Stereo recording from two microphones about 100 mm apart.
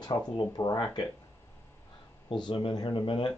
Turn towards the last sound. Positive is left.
turn(degrees=55)  # may be behind; listen again after turning